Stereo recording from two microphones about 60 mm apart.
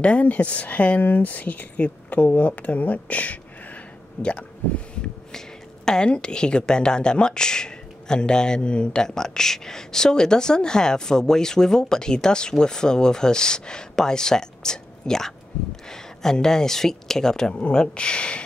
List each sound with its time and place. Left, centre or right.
0.0 s speech: left
5.9 s speech: centre